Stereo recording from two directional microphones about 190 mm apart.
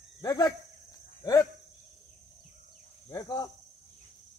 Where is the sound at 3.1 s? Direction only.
20° left (ahead or behind).